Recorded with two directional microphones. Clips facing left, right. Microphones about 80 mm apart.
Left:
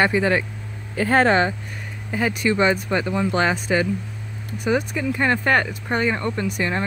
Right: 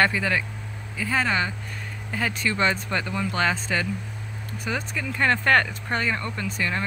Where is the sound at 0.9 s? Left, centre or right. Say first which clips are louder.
Left 8 dB; left.